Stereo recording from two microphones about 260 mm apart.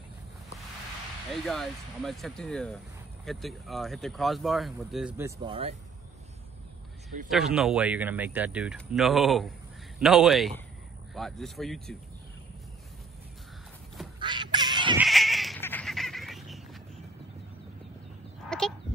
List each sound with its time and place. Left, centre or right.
1.3 s speech: centre; by 5.8 s right
7.2 s speech: centre
14.2 s duck: centre
15.0 s a sound: centre